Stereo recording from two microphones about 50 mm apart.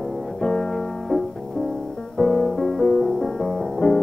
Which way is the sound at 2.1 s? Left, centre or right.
Centre.